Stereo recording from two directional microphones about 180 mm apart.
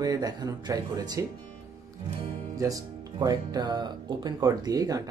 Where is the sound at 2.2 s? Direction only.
20° right (ahead or behind).